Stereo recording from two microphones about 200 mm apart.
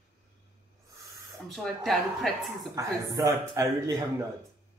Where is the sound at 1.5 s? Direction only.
Centre (ahead or behind).